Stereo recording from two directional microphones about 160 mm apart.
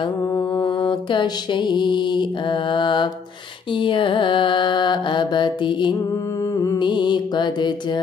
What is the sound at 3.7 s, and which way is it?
Mantra, 30° left (ahead or behind).